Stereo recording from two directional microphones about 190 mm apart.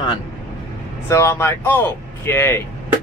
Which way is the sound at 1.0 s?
15° left (ahead or behind).